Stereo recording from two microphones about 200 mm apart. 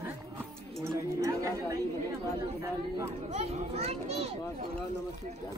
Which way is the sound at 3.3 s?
30° right (ahead or behind).